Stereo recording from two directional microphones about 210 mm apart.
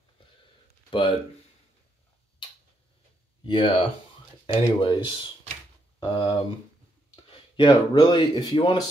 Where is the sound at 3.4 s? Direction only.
25° left (ahead or behind).